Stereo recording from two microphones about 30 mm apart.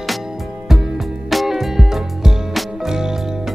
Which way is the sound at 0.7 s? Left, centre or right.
Centre.